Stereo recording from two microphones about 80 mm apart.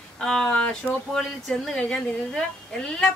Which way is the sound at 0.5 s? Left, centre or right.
Centre.